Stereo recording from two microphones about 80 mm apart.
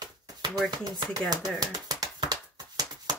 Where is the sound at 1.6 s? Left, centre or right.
Right.